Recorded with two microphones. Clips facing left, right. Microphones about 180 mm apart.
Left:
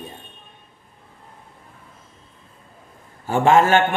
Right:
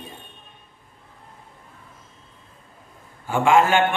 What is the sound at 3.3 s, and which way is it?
Speech, 40° left (ahead or behind).